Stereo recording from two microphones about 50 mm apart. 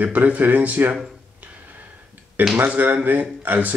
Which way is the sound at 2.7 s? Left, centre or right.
Right.